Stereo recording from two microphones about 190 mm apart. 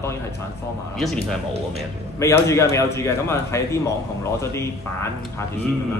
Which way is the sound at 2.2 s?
15° left (ahead or behind).